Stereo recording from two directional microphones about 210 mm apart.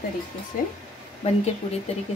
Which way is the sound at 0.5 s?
40° left (ahead or behind).